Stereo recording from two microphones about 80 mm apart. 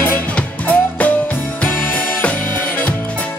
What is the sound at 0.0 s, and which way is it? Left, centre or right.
Music, centre.